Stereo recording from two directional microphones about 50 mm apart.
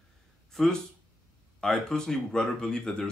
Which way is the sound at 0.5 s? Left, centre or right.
Centre.